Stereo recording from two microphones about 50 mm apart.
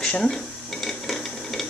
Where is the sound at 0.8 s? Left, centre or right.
Centre.